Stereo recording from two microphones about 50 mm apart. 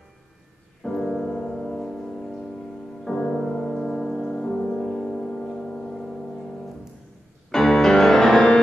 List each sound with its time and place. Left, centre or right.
0.8 s piano: centre
1.1 s music: centre